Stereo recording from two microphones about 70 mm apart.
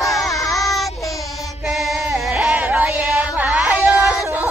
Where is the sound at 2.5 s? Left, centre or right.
Centre.